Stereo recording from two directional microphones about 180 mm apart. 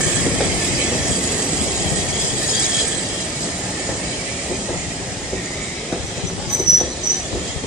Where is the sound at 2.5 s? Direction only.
5° right (ahead or behind).